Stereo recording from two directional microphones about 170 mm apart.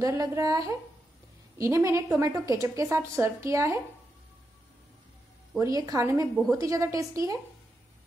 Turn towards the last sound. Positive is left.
turn(degrees=-20)  # may be behind; listen again after turning